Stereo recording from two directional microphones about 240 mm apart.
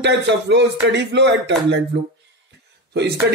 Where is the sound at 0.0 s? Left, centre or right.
Right.